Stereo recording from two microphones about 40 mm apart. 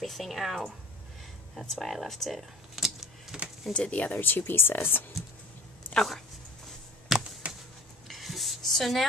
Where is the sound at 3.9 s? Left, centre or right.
Left.